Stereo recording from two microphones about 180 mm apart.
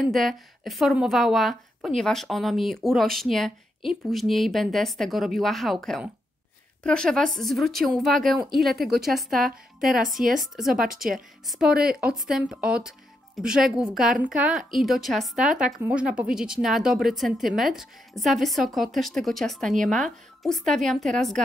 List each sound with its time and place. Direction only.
0.0 s a woman's voice: centre (ahead or behind)
9.3 s a woman's voice: 50° right (ahead or behind)
9.8 s a woman's voice: centre (ahead or behind)
11.4 s a woman's voice: 5° right (ahead or behind)